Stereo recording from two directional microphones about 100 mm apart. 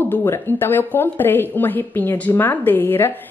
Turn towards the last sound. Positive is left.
turn(degrees=20)  # may be behind; listen again after turning